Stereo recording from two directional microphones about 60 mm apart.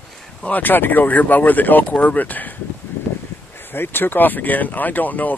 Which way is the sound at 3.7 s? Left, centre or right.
Left.